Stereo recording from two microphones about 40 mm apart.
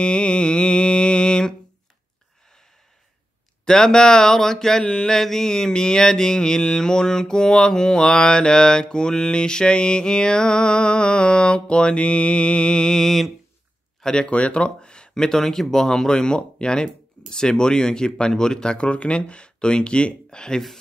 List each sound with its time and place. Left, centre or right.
0.0 s mantra: left
3.6 s mantra: centre
14.2 s mantra: left